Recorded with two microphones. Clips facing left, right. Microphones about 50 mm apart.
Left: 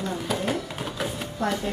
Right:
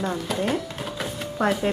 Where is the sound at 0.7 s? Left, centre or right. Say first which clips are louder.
Even; centre.